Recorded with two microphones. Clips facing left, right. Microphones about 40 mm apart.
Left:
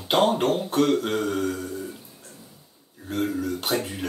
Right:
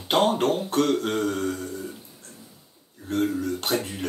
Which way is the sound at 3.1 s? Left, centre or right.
Centre.